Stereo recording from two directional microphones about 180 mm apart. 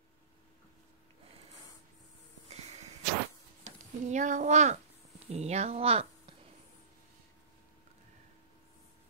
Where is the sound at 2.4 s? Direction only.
35° right (ahead or behind).